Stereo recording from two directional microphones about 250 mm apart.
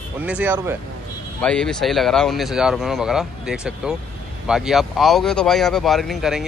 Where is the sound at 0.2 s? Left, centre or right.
Centre.